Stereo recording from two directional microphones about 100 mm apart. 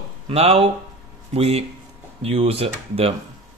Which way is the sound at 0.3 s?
85° right.